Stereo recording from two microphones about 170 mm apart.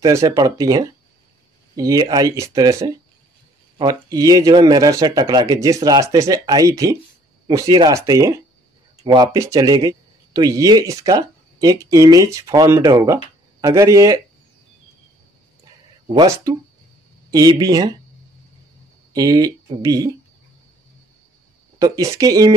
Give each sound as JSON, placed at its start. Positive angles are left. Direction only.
{"t": 0.0, "sound": "speech", "side_deg": -20}
{"t": 16.1, "sound": "speech", "side_deg": -25}
{"t": 19.1, "sound": "speech", "side_deg": -20}
{"t": 21.7, "sound": "speech", "side_deg": -20}